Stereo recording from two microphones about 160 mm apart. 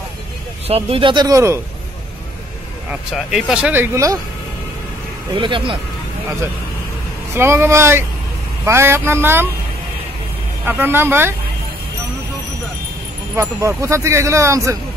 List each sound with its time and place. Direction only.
0.7 s speech: 40° right (ahead or behind); by 1.6 s 20° right (ahead or behind)
2.9 s speech: 5° right (ahead or behind)
5.3 s speech: 30° right (ahead or behind)
7.3 s speech: 15° right (ahead or behind)
10.6 s speech: 15° right (ahead or behind)
13.4 s speech: 15° right (ahead or behind)